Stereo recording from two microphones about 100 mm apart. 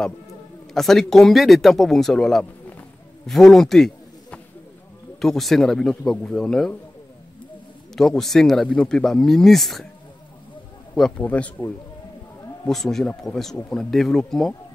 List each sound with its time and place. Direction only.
0.7 s a man's voice: 5° left (ahead or behind)
7.9 s speech: 5° left (ahead or behind)
11.0 s speech: 5° left (ahead or behind)
12.6 s speech: 5° left (ahead or behind)